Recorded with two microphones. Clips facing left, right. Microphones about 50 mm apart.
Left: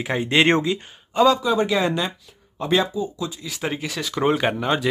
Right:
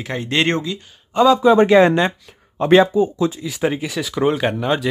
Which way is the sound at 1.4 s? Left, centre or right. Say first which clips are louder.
Right 9 dB; right.